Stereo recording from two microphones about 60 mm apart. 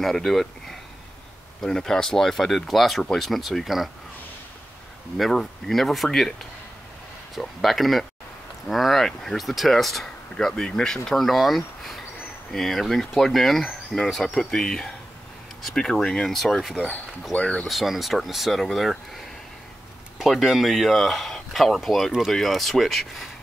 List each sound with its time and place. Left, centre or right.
0.0 s speech: centre
5.1 s speech: centre
7.3 s speech: centre
17.3 s speech: left
17.6 s speech: centre
20.2 s speech: centre